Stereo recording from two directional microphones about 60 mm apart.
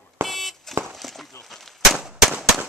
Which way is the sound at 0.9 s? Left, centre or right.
Centre.